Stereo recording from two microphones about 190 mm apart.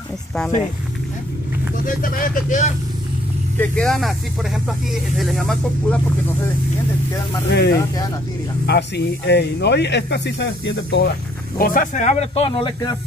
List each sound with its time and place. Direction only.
2.0 s speech: 45° left (ahead or behind)
3.5 s speech: 5° left (ahead or behind)
7.4 s speech: 60° left (ahead or behind)
11.5 s speech: 50° left (ahead or behind); by 12.9 s 25° left (ahead or behind)